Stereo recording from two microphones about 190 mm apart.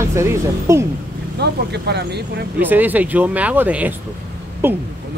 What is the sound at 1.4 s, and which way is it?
Speech, 60° right (ahead or behind).